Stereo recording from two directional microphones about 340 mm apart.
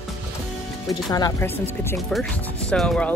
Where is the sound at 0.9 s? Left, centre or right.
Centre.